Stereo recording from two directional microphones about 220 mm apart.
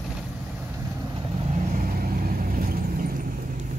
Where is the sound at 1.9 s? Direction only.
40° right (ahead or behind).